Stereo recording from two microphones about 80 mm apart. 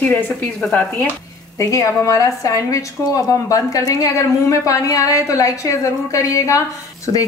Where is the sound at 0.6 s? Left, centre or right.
Centre.